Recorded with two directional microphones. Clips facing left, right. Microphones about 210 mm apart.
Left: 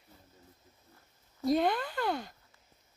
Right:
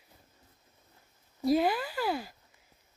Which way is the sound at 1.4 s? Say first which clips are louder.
Right 2 dB; 5° right (ahead or behind).